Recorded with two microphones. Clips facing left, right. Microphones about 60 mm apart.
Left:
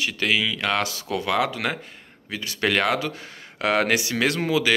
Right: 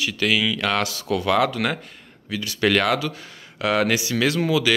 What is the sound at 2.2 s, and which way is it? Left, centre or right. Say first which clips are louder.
Speech: right 3 dB; left.